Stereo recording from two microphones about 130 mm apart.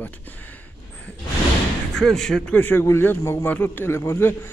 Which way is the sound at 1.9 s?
5° left (ahead or behind).